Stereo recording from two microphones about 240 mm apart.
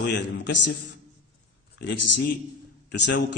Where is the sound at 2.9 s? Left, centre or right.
Left.